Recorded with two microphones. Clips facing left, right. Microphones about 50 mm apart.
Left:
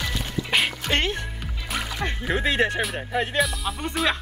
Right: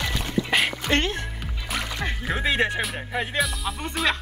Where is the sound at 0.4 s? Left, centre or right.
Centre.